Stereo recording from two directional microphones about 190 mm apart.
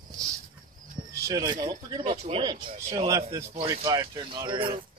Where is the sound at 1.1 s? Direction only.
20° right (ahead or behind).